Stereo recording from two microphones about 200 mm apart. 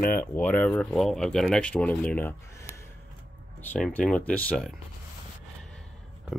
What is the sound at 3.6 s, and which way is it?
Speech, 5° left (ahead or behind).